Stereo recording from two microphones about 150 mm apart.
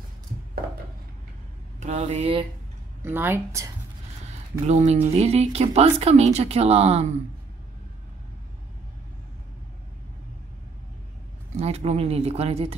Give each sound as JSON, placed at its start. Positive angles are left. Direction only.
{"t": 1.8, "sound": "speech", "side_deg": -50}
{"t": 3.0, "sound": "speech", "side_deg": -15}
{"t": 4.6, "sound": "speech", "side_deg": -50}
{"t": 11.6, "sound": "speech", "side_deg": -45}